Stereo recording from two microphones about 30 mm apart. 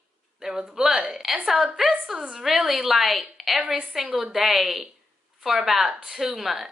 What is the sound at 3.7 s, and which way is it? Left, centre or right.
A woman's voice, centre.